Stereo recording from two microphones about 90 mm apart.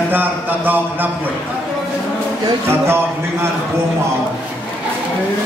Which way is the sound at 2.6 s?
25° right (ahead or behind).